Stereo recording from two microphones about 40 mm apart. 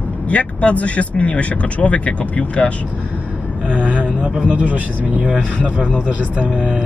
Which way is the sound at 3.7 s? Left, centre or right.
Right.